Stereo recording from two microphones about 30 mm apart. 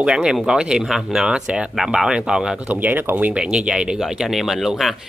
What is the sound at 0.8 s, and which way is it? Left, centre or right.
Speech, centre.